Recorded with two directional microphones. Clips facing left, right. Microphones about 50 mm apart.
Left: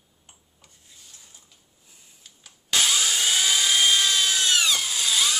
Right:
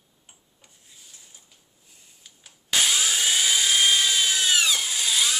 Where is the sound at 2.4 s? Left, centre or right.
Centre.